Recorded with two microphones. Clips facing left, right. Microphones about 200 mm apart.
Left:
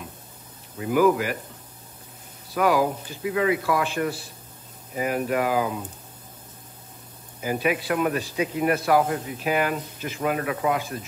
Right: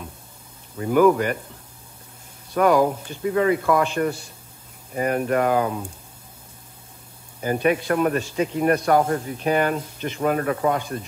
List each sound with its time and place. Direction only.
0.7 s speech: 5° left (ahead or behind)
2.5 s speech: 5° left (ahead or behind)
7.4 s speech: 5° left (ahead or behind)
8.1 s speech: 45° right (ahead or behind)
8.7 s speech: 5° left (ahead or behind)
10.3 s speech: 40° right (ahead or behind)